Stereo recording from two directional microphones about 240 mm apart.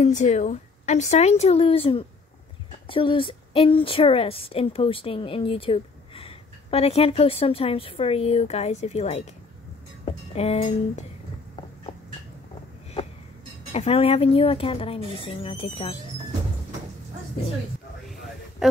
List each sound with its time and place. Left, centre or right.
0.0 s a woman's voice: left
13.7 s a woman's voice: left
18.6 s a sound: centre